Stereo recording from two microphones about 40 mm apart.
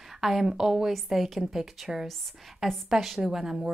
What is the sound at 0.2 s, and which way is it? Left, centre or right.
A woman's voice, centre.